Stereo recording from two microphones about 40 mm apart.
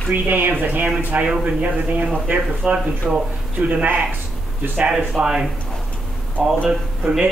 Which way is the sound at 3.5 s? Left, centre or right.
Right.